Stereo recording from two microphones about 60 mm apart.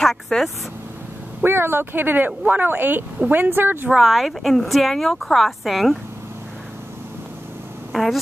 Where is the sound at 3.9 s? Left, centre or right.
Centre.